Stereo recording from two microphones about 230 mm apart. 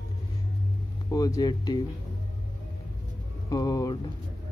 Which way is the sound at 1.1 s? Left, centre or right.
Centre.